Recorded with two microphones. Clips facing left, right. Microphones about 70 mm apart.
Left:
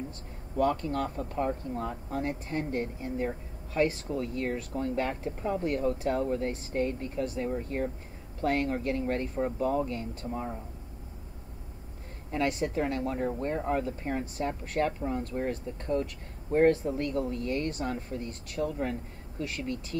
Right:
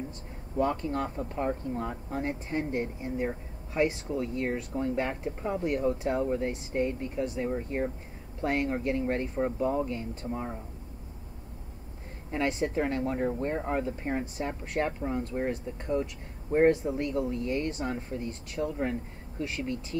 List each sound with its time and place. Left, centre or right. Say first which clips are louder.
0.6 s speech: left 1 dB; right
12.3 s speech: even; right